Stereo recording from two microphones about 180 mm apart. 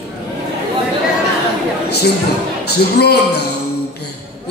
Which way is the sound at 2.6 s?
65° left (ahead or behind).